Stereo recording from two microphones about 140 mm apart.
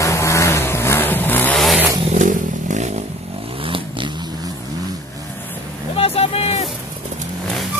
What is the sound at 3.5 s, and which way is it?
Vehicle, 40° right (ahead or behind).